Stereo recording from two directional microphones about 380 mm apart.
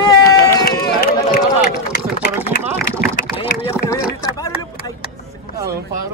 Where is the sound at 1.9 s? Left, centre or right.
Left.